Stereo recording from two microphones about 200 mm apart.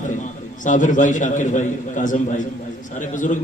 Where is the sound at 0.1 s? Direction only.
40° left (ahead or behind).